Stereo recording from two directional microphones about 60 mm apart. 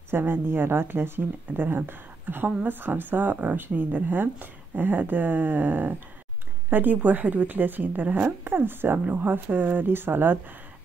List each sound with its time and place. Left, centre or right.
0.1 s a woman's voice: right